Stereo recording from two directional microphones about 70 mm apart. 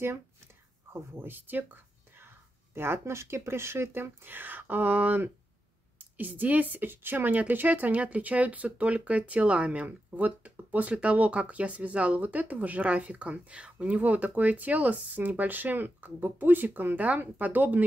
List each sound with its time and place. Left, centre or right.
0.9 s speech: right